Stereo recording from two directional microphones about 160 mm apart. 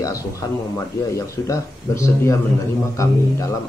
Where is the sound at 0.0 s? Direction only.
20° left (ahead or behind).